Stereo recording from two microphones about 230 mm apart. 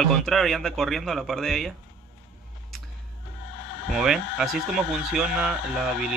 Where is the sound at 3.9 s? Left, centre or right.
Centre.